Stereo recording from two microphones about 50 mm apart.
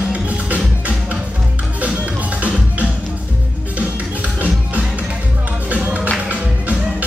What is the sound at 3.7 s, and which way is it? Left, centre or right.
Music, right.